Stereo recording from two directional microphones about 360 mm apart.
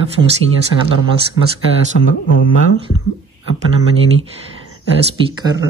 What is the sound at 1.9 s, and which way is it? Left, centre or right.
Mantra, left.